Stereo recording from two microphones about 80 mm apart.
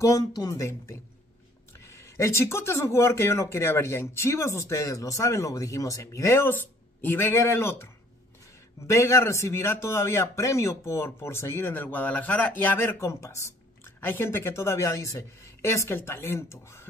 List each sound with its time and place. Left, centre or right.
0.0 s speech: left
13.8 s speech: left